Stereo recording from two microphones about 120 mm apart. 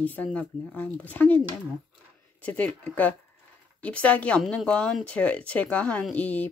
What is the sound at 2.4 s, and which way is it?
Speech, 15° left (ahead or behind).